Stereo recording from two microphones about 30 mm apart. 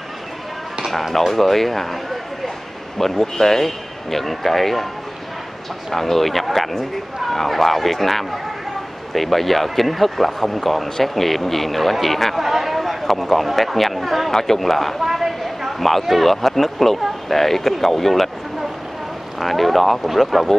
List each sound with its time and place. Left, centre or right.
1.1 s speech: centre
3.0 s speech: centre
5.9 s speech: centre
12.4 s a sound: centre
13.7 s speech: centre
14.3 s speech: centre
15.0 s a sound: centre
15.8 s speech: centre
19.4 s speech: centre